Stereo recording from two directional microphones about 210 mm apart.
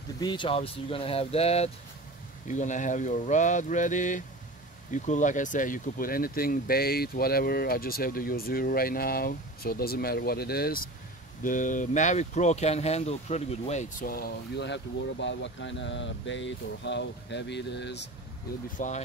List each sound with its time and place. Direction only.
0.2 s speech: 20° left (ahead or behind); by 18.0 s 55° left (ahead or behind)
18.8 s speech: 40° left (ahead or behind)